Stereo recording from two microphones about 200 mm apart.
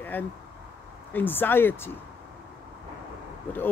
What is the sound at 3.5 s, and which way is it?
Speech, 10° left (ahead or behind).